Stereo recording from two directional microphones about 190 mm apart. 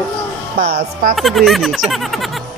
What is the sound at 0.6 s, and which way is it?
Speech, 40° right (ahead or behind).